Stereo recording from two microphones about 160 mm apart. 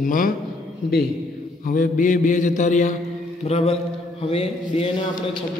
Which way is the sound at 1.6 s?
55° left (ahead or behind).